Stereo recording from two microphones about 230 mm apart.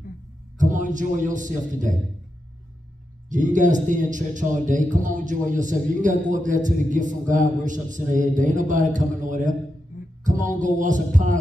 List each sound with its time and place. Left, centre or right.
0.6 s a man's voice: right
3.3 s a man's voice: right
10.2 s music: right
10.6 s a man's voice: right